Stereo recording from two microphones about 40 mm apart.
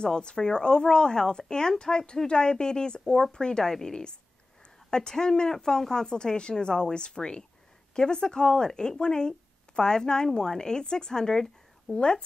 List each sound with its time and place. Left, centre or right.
0.0 s speech: left
11.9 s speech: left